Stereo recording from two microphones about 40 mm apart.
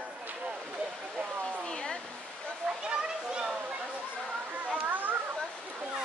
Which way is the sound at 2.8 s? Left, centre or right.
Right.